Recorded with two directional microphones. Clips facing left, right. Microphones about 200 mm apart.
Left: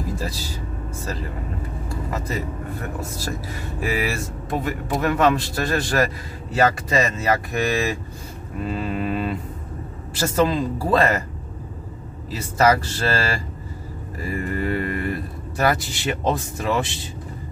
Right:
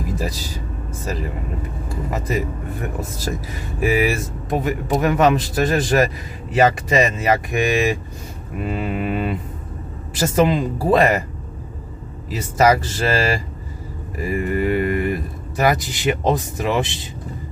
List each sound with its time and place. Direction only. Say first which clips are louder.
2.1 s speech: right 5 dB; 15° right (ahead or behind)
3.8 s speech: right 6 dB; 15° right (ahead or behind)
12.3 s speech: right 2 dB; 15° right (ahead or behind)